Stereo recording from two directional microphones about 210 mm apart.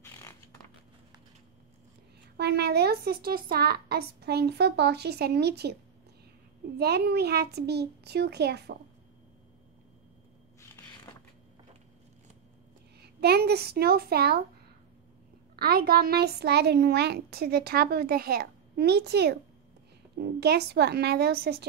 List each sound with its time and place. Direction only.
0.0 s a sound: 15° left (ahead or behind)
2.3 s a woman's voice: 50° right (ahead or behind)
6.8 s a woman's voice: 50° right (ahead or behind)
13.0 s a woman's voice: 50° right (ahead or behind)
15.5 s a woman's voice: 45° right (ahead or behind)